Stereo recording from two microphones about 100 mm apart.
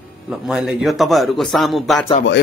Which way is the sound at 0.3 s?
5° right (ahead or behind).